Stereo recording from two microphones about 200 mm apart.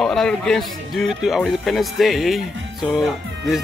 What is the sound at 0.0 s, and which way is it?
Speech, 5° left (ahead or behind).